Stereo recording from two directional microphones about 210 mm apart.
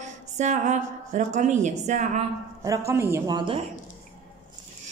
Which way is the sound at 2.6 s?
15° right (ahead or behind).